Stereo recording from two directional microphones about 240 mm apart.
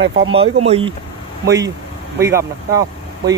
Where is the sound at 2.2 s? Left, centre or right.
Centre.